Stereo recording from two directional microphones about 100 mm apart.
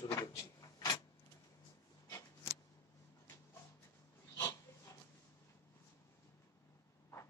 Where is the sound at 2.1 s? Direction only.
30° left (ahead or behind).